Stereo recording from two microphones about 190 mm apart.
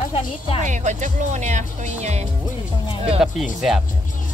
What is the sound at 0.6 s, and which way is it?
Speech, 40° right (ahead or behind).